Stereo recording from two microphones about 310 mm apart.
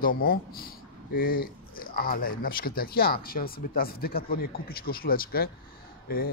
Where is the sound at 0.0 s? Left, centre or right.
Left.